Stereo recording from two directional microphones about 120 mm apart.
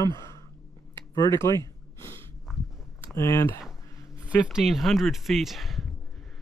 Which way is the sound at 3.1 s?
25° left (ahead or behind).